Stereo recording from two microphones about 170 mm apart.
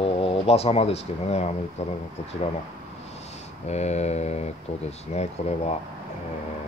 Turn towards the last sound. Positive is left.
turn(degrees=40)  # may be behind; listen again after turning